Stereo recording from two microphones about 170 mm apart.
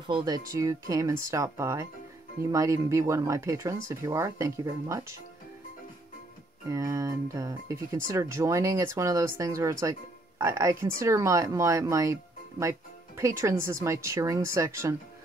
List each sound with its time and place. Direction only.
0.0 s speech: 25° right (ahead or behind)
6.7 s speech: 20° right (ahead or behind)